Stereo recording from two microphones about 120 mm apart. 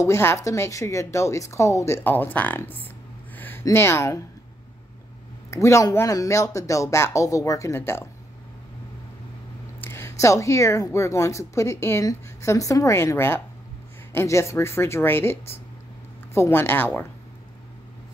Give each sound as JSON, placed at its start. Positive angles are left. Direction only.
{"t": 0.0, "sound": "speech", "side_deg": 20}
{"t": 3.3, "sound": "a sound", "side_deg": 15}
{"t": 3.7, "sound": "speech", "side_deg": 20}
{"t": 5.5, "sound": "speech", "side_deg": 25}
{"t": 9.8, "sound": "speech", "side_deg": 20}